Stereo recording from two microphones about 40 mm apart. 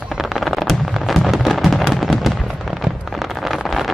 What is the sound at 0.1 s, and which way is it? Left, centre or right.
Fireworks, centre.